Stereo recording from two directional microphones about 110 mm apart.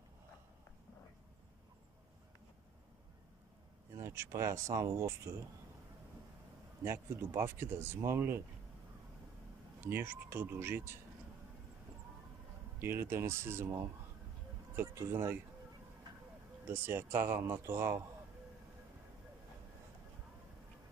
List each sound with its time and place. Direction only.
4.0 s speech: 25° right (ahead or behind)
6.8 s speech: 20° right (ahead or behind)
9.8 s speech: 20° right (ahead or behind)
12.7 s speech: 20° right (ahead or behind)
16.6 s speech: 20° right (ahead or behind)